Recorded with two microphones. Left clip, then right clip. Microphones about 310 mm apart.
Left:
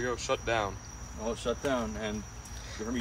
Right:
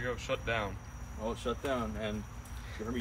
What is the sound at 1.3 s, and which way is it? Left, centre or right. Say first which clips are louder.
Speech: left 4 dB; left.